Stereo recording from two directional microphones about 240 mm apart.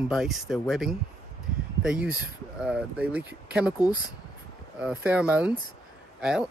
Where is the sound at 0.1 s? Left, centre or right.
Centre.